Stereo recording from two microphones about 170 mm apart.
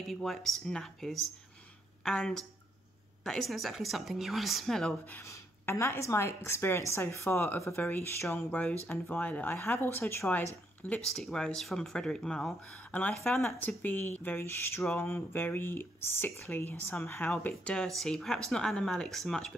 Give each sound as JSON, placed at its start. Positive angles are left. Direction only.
{"t": 0.0, "sound": "speech", "side_deg": 0}